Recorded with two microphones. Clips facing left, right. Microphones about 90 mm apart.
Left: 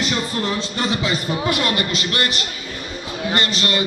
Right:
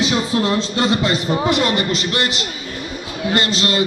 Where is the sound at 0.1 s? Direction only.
5° right (ahead or behind).